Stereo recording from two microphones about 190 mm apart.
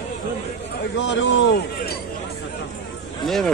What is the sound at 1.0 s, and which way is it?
Speech, 75° left (ahead or behind).